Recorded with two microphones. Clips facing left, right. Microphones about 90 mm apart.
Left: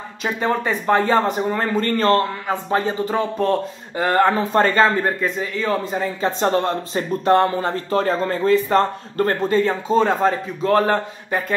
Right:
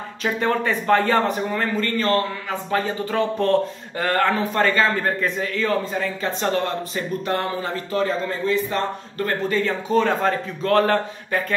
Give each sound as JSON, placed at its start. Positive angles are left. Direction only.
{"t": 0.2, "sound": "speech", "side_deg": 15}
{"t": 1.5, "sound": "speech", "side_deg": 30}
{"t": 2.5, "sound": "a man's voice", "side_deg": 25}
{"t": 3.2, "sound": "speech", "side_deg": 10}
{"t": 4.0, "sound": "a man's voice", "side_deg": 20}
{"t": 5.2, "sound": "speech", "side_deg": 10}
{"t": 5.7, "sound": "a man's voice", "side_deg": 20}
{"t": 6.4, "sound": "speech", "side_deg": 30}
{"t": 9.4, "sound": "a man's voice", "side_deg": 30}